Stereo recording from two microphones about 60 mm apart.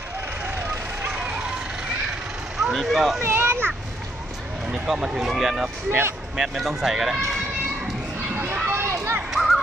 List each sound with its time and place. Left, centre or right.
0.5 s vehicle: right
1.0 s vehicle: centre
2.5 s speech: centre
3.2 s children playing: right
4.9 s speech: centre
5.9 s speech: right
6.3 s speech: centre
8.6 s run: right
9.3 s music: centre